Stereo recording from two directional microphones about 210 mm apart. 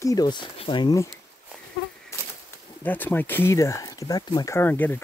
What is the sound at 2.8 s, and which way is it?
Speech, 10° left (ahead or behind).